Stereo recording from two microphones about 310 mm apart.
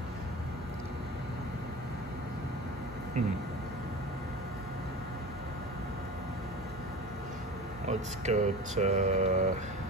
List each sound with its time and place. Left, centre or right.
7.9 s speech: right